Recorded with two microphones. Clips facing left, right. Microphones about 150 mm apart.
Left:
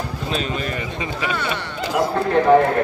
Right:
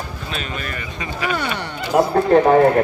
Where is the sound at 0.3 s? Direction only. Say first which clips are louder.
Left 5 dB; 30° left (ahead or behind).